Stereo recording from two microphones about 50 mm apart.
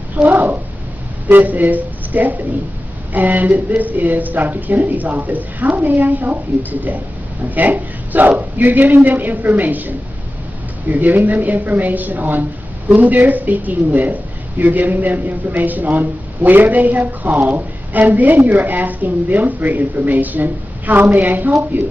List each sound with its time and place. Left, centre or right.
0.1 s a man's voice: right